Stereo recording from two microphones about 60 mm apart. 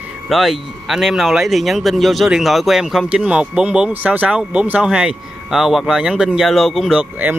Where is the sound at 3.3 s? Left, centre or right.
Centre.